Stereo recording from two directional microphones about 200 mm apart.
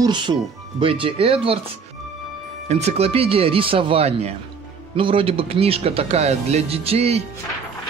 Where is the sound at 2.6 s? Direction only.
35° right (ahead or behind).